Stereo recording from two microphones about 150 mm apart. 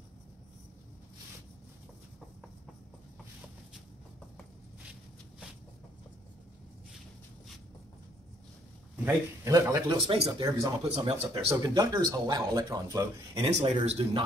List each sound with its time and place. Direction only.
8.9 s a man's voice: 10° right (ahead or behind)
9.5 s speech: 25° right (ahead or behind)
13.5 s speech: 45° right (ahead or behind)